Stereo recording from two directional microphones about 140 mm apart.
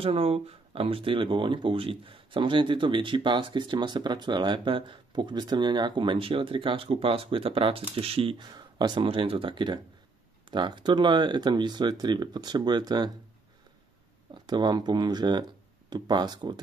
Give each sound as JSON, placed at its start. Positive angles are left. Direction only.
{"t": 0.0, "sound": "speech", "side_deg": -45}
{"t": 14.3, "sound": "speech", "side_deg": -30}